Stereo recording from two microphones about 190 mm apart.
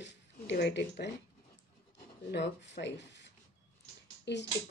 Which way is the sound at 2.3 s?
65° left (ahead or behind).